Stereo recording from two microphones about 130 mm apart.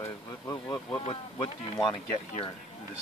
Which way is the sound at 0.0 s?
25° left (ahead or behind).